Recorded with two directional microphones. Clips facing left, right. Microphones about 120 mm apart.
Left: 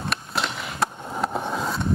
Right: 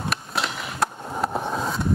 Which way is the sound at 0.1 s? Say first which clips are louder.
Left 2 dB; centre (ahead or behind).